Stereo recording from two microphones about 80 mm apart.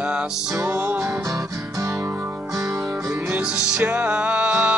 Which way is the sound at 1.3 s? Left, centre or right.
Right.